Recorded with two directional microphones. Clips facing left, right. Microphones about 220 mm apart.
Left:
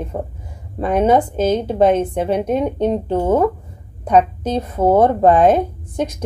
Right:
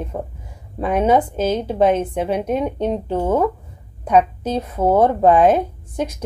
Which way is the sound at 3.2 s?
15° left (ahead or behind).